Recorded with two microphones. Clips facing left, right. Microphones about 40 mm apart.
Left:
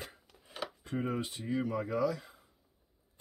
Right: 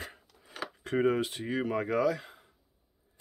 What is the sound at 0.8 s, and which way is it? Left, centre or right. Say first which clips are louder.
Speech: right 9 dB; right.